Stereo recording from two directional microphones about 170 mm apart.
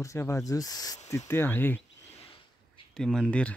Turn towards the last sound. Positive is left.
turn(degrees=5)  # may be behind; listen again after turning